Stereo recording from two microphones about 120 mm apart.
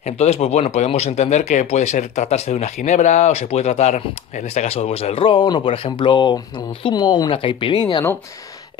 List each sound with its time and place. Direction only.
0.0 s speech: 60° left (ahead or behind); by 8.0 s 40° left (ahead or behind)